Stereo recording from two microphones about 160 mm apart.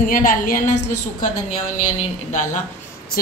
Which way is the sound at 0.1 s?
60° left (ahead or behind).